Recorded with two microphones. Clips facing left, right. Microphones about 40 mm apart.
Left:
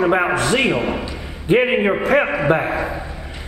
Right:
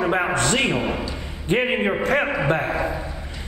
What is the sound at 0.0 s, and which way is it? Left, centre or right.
A man's voice, centre.